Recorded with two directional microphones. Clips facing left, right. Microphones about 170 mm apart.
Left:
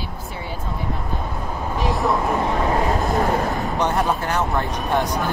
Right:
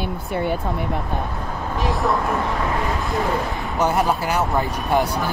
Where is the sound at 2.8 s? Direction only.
40° left (ahead or behind).